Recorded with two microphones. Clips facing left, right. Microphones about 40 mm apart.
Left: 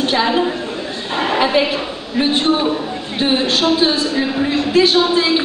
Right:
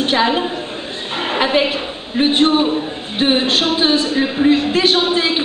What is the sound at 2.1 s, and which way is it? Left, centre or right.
A woman's voice, right.